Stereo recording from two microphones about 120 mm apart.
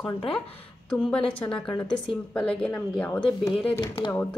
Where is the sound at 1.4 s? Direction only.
5° left (ahead or behind).